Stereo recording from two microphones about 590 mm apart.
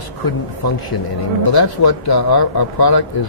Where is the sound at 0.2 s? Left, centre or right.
Left.